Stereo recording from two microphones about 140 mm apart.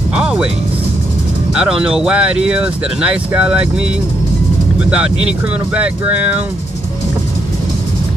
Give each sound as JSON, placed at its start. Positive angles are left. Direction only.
{"t": 0.1, "sound": "music", "side_deg": -10}
{"t": 1.5, "sound": "speech", "side_deg": -5}
{"t": 4.8, "sound": "speech", "side_deg": -10}